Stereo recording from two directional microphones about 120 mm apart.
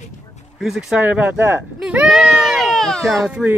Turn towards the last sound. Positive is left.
turn(degrees=-10)  # may be behind; listen again after turning